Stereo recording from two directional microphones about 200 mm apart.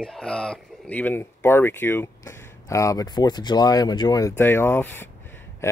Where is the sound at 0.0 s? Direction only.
5° left (ahead or behind).